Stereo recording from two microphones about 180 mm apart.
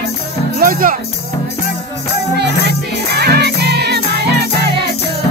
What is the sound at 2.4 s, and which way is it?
Music, 65° right (ahead or behind).